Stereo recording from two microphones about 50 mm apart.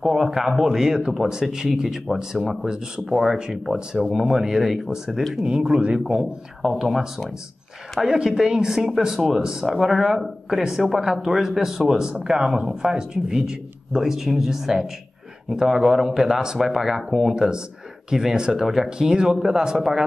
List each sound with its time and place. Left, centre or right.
0.0 s speech: centre
5.4 s speech: centre